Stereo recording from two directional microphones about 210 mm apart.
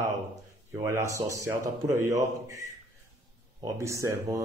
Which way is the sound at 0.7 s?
15° right (ahead or behind).